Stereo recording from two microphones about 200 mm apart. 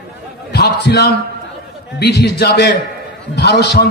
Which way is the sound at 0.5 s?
55° left (ahead or behind).